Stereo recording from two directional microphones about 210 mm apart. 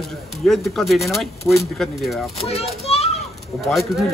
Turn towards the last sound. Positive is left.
turn(degrees=0)  # may be behind; listen again after turning